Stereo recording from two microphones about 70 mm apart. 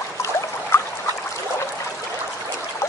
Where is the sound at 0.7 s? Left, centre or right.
Left.